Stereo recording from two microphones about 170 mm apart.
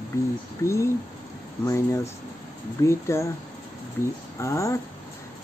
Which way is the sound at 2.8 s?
15° left (ahead or behind).